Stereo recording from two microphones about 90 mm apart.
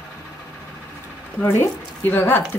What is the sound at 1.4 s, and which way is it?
Speech, 30° left (ahead or behind).